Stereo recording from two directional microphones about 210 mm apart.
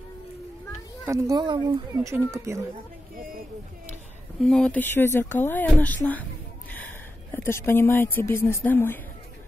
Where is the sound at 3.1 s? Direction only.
45° right (ahead or behind).